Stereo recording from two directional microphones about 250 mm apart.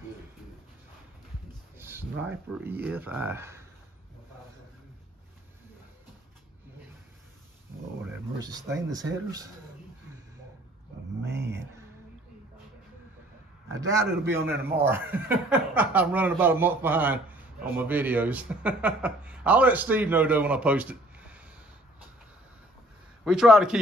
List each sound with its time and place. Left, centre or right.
1.8 s a sound: centre
2.2 s speech: centre
8.6 s speech: right
11.3 s a sound: centre
13.7 s speech: centre
23.2 s a man's voice: centre